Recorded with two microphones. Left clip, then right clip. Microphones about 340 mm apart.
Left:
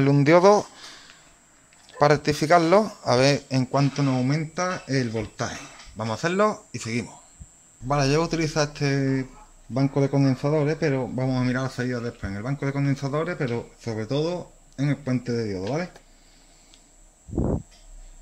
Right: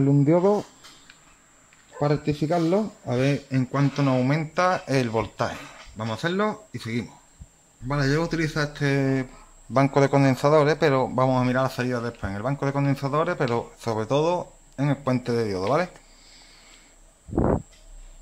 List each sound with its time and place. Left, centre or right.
0.0 s speech: left
2.0 s speech: centre
2.4 s speech: left
3.2 s speech: centre
9.8 s a man's voice: right
11.1 s speech: centre
13.5 s a man's voice: right
13.9 s speech: centre
15.3 s a man's voice: right
17.4 s a sound: right